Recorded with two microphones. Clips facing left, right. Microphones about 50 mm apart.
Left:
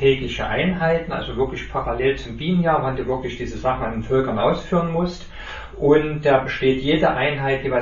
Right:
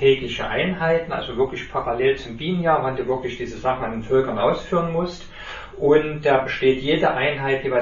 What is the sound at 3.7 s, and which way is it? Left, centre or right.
A man's voice, left.